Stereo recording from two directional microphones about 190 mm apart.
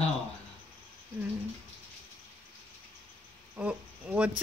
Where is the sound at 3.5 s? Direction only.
10° right (ahead or behind).